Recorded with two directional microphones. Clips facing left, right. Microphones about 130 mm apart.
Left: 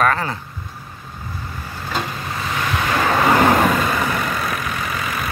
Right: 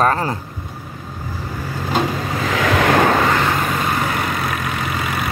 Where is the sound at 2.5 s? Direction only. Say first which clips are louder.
Right 6 dB; 90° right.